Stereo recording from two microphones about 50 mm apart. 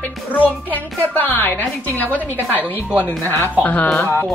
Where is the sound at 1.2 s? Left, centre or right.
Left.